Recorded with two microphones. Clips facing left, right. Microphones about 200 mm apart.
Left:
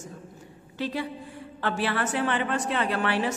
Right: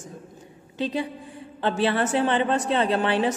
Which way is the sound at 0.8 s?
20° right (ahead or behind).